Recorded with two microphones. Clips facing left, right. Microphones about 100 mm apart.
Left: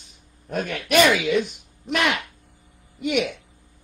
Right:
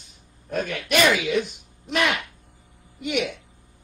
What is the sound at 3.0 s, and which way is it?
Speech, 55° left (ahead or behind).